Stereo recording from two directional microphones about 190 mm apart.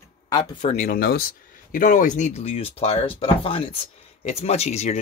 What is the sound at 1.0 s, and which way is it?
Speech, 55° left (ahead or behind).